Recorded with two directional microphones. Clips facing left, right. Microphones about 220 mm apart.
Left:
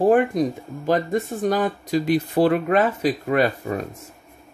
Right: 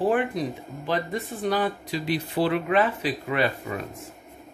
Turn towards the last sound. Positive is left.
turn(degrees=45)  # may be behind; listen again after turning